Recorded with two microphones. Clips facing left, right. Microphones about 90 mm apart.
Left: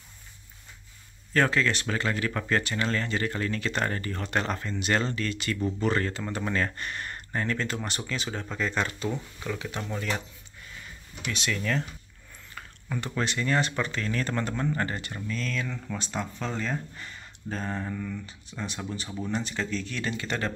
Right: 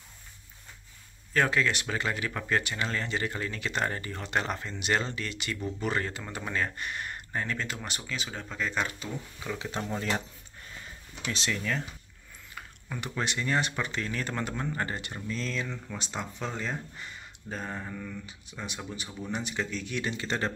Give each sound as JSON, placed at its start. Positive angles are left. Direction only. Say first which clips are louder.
{"t": 1.3, "sound": "speech", "louder": "left 2 dB", "side_deg": -10}
{"t": 9.6, "sound": "speech", "louder": "even", "side_deg": -25}
{"t": 11.2, "sound": "speech", "louder": "left 1 dB", "side_deg": -30}
{"t": 11.5, "sound": "speech", "louder": "left 3 dB", "side_deg": -10}